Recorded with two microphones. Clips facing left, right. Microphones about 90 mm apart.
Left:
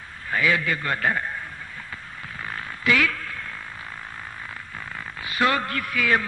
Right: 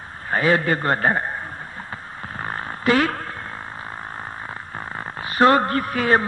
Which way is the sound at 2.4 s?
40° right (ahead or behind).